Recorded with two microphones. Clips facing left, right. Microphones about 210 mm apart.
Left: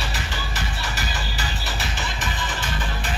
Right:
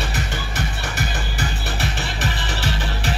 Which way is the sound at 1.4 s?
65° right (ahead or behind).